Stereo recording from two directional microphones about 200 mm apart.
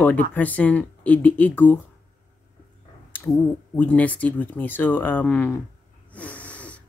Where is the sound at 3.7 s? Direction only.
10° left (ahead or behind).